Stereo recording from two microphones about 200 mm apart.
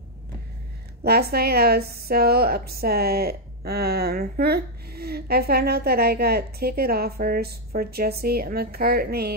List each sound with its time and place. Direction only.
1.0 s a woman's voice: 50° right (ahead or behind)